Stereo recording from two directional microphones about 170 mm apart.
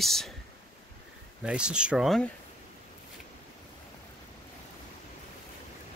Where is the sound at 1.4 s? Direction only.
5° right (ahead or behind).